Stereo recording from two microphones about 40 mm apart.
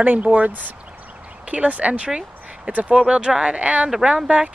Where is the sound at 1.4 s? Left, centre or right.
Right.